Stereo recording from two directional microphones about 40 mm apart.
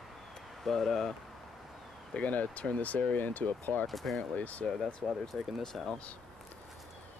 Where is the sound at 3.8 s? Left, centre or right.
Centre.